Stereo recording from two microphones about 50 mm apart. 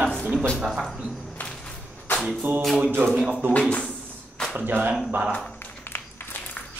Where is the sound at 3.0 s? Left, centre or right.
Right.